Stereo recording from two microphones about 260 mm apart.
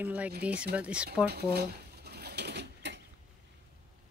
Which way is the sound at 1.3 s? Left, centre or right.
Right.